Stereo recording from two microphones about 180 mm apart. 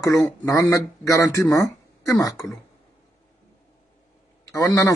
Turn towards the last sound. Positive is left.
turn(degrees=20)  # may be behind; listen again after turning